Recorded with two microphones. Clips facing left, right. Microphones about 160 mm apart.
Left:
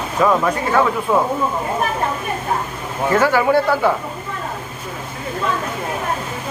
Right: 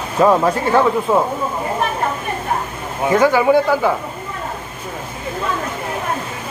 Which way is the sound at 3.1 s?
15° right (ahead or behind).